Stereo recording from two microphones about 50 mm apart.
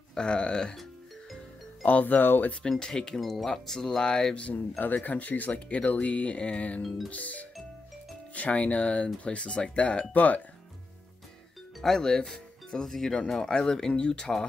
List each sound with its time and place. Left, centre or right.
0.1 s speech: centre
1.9 s speech: left
2.7 s speech: centre
4.5 s speech: left
11.8 s speech: centre